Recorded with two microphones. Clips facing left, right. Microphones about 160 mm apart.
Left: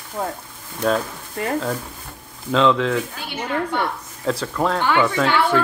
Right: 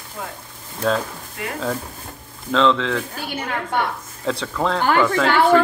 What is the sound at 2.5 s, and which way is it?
Speech, 10° left (ahead or behind).